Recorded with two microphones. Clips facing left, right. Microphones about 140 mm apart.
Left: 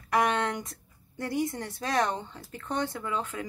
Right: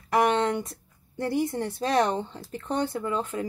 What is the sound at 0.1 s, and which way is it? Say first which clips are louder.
A woman's voice: right 4 dB; 25° right (ahead or behind).